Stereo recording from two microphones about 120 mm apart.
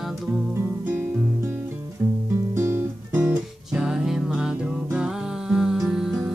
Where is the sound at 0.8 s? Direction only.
20° right (ahead or behind).